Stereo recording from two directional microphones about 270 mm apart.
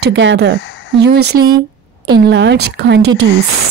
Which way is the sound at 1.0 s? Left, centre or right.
Right.